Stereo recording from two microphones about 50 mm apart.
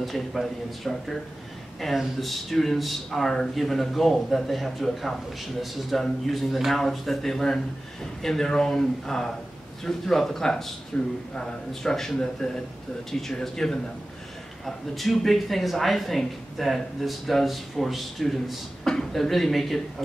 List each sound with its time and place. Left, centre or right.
0.0 s speech: centre
10.9 s a man's voice: left
11.3 s speech: centre